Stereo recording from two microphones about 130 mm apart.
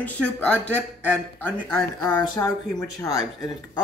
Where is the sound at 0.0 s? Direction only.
5° left (ahead or behind).